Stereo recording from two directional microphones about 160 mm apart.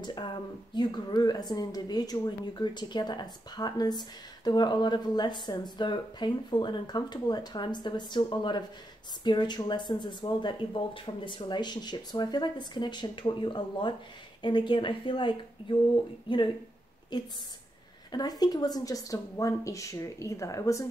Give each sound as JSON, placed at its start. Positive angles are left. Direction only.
{"t": 0.0, "sound": "speech", "side_deg": 30}